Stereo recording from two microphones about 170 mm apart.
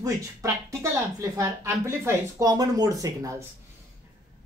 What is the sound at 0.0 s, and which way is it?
A man's voice, 15° right (ahead or behind).